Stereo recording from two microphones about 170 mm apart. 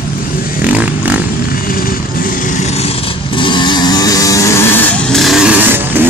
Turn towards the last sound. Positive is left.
turn(degrees=-5)  # may be behind; listen again after turning